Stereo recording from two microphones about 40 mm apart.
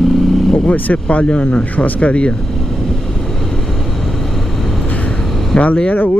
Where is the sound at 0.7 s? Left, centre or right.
Left.